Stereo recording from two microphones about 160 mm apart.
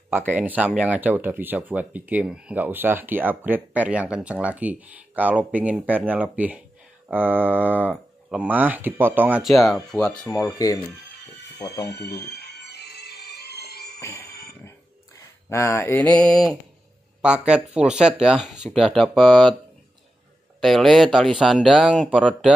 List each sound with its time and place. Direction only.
0.3 s speech: 10° right (ahead or behind); by 10.3 s 5° left (ahead or behind)
10.3 s speech: 20° left (ahead or behind)
11.5 s music: 20° left (ahead or behind)
11.8 s music: 90° left
13.9 s music: 15° left (ahead or behind)
14.2 s a sound: 75° left (ahead or behind)
15.5 s speech: 15° left (ahead or behind)
17.2 s speech: 5° right (ahead or behind)
20.6 s speech: centre (ahead or behind)